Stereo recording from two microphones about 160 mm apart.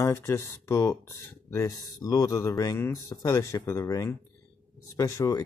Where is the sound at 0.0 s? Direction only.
15° left (ahead or behind).